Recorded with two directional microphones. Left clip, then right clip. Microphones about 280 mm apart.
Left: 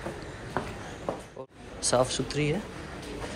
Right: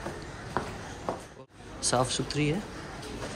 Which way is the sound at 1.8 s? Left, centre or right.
Centre.